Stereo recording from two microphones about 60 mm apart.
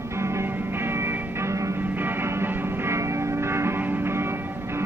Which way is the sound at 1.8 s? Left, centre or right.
Right.